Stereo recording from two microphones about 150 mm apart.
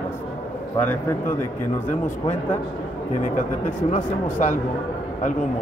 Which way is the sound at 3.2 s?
60° left (ahead or behind).